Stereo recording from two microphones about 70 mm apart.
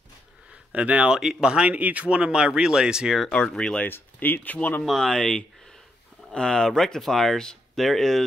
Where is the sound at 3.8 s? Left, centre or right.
Left.